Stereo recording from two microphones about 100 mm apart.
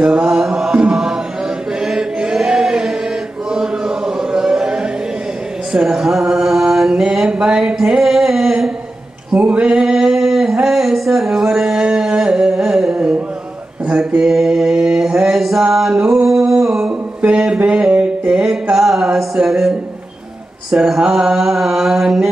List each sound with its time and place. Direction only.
0.0 s mantra: 5° right (ahead or behind)
1.8 s chant: 5° right (ahead or behind)
5.7 s mantra: 5° right (ahead or behind)
9.3 s male singing: 10° right (ahead or behind)
13.8 s mantra: 10° right (ahead or behind)
17.6 s music: 10° right (ahead or behind)
20.7 s mantra: 5° right (ahead or behind)